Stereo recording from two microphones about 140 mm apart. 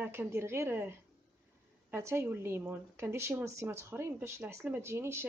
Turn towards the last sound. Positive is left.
turn(degrees=-20)  # may be behind; listen again after turning